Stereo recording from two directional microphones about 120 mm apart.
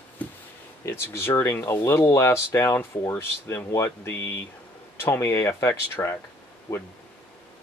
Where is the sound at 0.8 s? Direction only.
20° left (ahead or behind).